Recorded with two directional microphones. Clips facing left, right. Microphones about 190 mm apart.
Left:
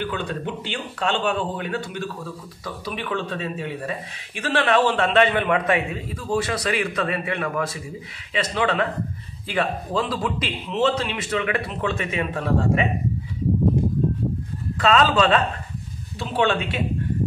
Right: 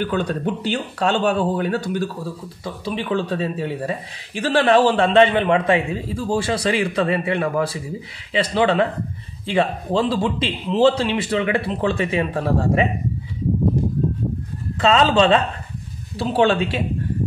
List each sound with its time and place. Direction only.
0.0 s a man's voice: 40° right (ahead or behind)
2.6 s a man's voice: 30° right (ahead or behind)
14.8 s a man's voice: 25° right (ahead or behind)